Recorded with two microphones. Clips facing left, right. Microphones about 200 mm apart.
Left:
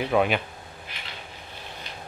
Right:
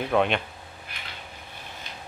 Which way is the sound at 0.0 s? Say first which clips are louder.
Left 1 dB; 5° left (ahead or behind).